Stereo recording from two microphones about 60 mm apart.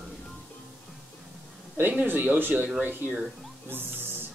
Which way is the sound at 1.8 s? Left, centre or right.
Right.